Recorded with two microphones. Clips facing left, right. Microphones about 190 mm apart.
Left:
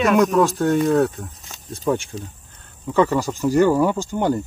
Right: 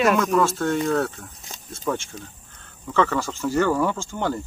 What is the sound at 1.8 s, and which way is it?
Speech, 15° left (ahead or behind).